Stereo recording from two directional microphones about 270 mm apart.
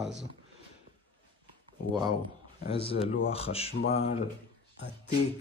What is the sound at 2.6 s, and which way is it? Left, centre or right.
Speech, left.